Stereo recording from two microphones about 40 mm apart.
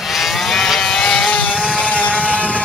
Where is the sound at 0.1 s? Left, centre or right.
Centre.